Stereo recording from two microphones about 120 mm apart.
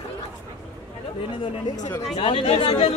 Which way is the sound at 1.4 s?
40° left (ahead or behind).